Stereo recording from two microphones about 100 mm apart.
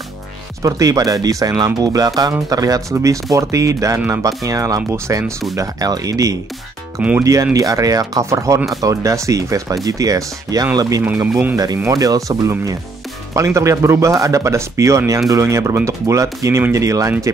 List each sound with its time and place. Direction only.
0.6 s speech: 35° right (ahead or behind)
7.0 s speech: 15° right (ahead or behind)
7.5 s speech: 35° right (ahead or behind)